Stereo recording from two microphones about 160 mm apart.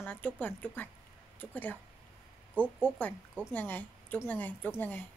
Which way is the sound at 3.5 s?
10° left (ahead or behind).